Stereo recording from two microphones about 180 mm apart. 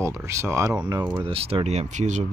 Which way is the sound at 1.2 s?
30° right (ahead or behind).